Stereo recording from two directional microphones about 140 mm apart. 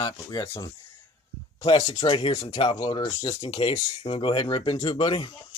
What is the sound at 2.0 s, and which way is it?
Speech, 40° left (ahead or behind).